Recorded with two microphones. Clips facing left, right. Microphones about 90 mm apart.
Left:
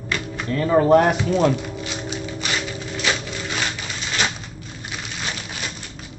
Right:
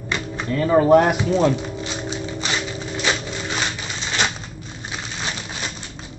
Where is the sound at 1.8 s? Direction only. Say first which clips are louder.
Right 1 dB; 30° right (ahead or behind).